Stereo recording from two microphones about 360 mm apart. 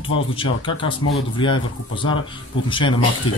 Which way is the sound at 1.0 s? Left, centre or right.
Left.